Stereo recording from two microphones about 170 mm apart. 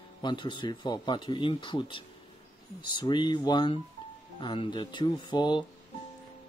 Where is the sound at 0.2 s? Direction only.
25° left (ahead or behind).